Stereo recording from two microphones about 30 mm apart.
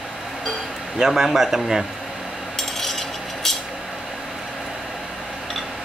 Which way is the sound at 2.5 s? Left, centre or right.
Centre.